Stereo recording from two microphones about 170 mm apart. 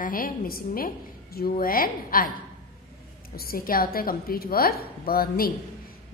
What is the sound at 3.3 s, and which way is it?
A woman's voice, 60° left (ahead or behind).